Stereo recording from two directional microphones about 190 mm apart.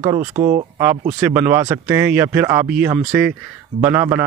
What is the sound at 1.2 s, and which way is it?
Speech, 15° right (ahead or behind).